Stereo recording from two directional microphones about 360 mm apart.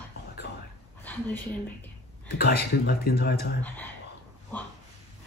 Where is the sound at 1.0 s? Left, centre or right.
Centre.